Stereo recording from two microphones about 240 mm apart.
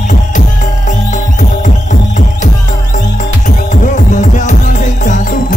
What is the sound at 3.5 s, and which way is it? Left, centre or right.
Music, left.